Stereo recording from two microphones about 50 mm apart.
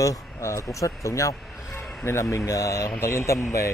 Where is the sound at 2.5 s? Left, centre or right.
Left.